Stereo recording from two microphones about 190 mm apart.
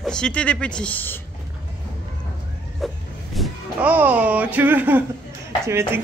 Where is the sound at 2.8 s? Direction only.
Centre (ahead or behind).